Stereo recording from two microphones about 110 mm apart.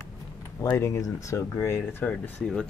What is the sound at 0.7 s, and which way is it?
Speech, 25° left (ahead or behind).